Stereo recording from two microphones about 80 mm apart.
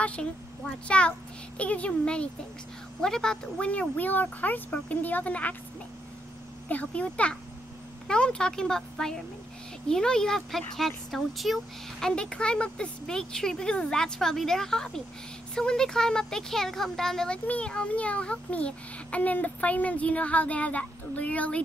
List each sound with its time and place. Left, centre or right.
0.0 s a child's voice: centre
6.7 s a child's voice: centre
12.1 s a child's voice: centre